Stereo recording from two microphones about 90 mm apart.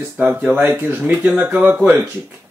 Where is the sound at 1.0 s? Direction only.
10° right (ahead or behind).